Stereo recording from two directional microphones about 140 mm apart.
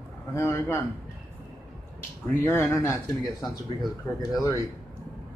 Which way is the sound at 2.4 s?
15° left (ahead or behind).